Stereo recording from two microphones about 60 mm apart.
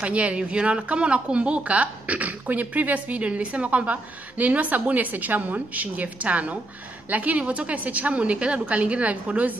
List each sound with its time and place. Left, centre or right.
0.0 s speech: right